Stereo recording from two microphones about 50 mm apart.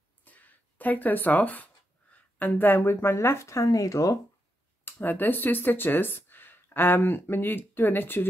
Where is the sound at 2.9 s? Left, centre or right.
Left.